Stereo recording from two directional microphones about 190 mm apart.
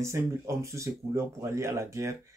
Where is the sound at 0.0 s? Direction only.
15° right (ahead or behind).